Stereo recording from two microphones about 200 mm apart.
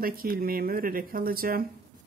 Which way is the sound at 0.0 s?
45° right (ahead or behind).